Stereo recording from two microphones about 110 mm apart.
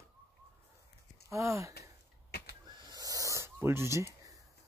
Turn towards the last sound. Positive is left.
turn(degrees=-30)  # may be behind; listen again after turning